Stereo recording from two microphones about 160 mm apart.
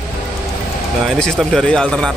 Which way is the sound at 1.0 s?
5° left (ahead or behind).